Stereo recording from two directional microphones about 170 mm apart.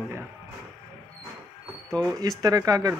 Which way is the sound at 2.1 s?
20° right (ahead or behind).